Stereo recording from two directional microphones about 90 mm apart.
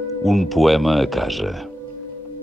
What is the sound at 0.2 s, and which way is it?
Speech, centre (ahead or behind).